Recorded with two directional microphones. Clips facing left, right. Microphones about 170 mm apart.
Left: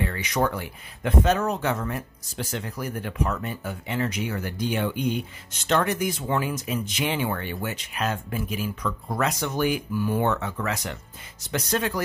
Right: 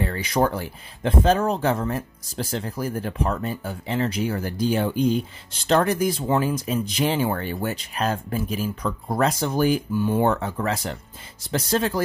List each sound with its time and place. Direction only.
0.0 s speech: 35° right (ahead or behind)